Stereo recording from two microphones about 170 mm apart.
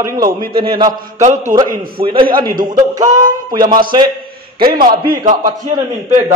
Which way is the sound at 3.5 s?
25° right (ahead or behind).